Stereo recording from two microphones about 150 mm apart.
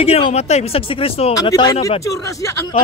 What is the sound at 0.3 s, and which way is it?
Speech, 45° left (ahead or behind).